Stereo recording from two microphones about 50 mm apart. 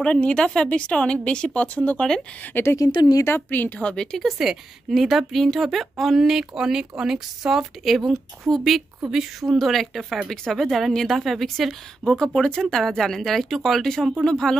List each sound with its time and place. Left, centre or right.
0.0 s a woman's voice: centre
2.5 s a woman's voice: left
3.8 s speech: centre
4.2 s a woman's voice: centre
12.0 s a woman's voice: centre